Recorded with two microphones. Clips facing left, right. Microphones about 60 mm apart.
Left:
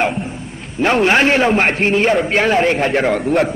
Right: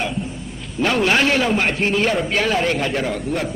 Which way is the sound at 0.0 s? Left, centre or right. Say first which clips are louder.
Left 6 dB; left.